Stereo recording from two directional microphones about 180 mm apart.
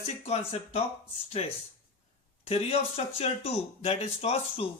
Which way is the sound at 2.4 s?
35° left (ahead or behind).